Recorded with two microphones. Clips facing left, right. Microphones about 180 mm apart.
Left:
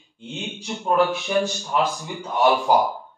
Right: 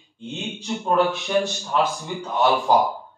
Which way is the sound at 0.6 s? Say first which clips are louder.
Even; centre (ahead or behind).